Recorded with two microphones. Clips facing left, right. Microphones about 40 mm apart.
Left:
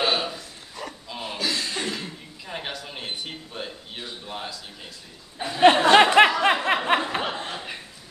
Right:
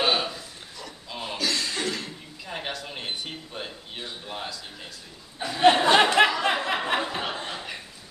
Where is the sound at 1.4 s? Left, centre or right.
Centre.